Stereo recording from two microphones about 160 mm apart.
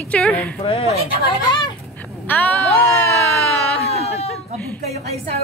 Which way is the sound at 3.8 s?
40° left (ahead or behind).